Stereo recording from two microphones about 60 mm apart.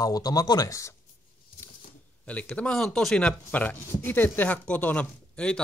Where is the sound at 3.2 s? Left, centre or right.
Left.